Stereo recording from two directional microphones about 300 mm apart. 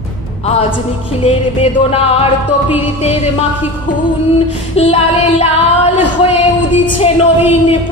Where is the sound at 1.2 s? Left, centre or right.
Centre.